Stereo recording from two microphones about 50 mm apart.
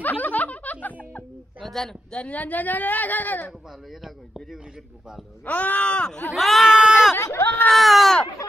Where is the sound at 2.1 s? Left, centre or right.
Left.